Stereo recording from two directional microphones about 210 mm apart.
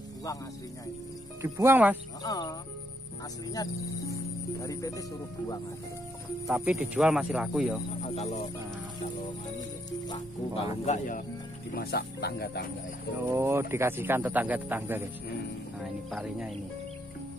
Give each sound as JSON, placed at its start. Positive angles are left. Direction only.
{"t": 1.4, "sound": "a man's voice", "side_deg": -10}
{"t": 2.2, "sound": "speech", "side_deg": 15}
{"t": 4.1, "sound": "speech", "side_deg": 15}
{"t": 6.4, "sound": "speech", "side_deg": -5}
{"t": 8.1, "sound": "speech", "side_deg": 30}
{"t": 9.8, "sound": "music", "side_deg": 20}
{"t": 10.9, "sound": "speech", "side_deg": 40}
{"t": 13.2, "sound": "a man's voice", "side_deg": -10}